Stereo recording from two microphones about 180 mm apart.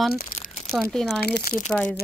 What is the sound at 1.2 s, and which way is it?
Speech, 60° left (ahead or behind).